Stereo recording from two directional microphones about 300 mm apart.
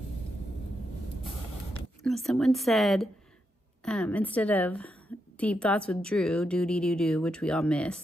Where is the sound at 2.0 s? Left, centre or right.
Centre.